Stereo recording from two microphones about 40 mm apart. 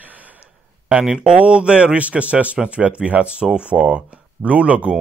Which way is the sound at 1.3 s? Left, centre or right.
Right.